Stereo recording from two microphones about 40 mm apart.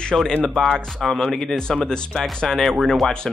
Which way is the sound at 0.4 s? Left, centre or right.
Centre.